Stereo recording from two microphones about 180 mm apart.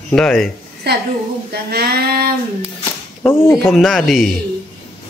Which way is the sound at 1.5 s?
60° right (ahead or behind).